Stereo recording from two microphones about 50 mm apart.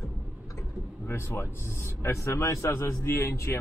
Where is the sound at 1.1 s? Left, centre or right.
Left.